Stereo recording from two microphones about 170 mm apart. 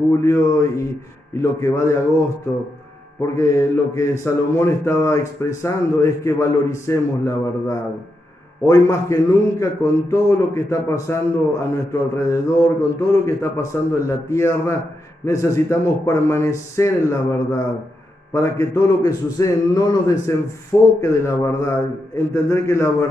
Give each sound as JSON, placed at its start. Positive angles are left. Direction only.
{"t": 0.2, "sound": "a man's voice", "side_deg": 15}
{"t": 3.2, "sound": "a man's voice", "side_deg": 20}